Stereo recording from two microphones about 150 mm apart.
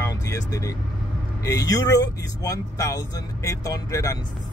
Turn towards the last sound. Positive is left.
turn(degrees=25)  # may be behind; listen again after turning